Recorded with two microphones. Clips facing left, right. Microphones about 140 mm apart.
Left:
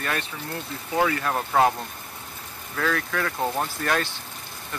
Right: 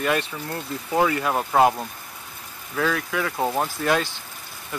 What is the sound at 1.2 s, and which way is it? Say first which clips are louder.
Speech: right 2 dB; 10° right (ahead or behind).